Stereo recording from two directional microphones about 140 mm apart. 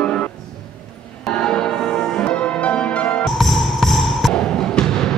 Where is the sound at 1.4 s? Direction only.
5° left (ahead or behind).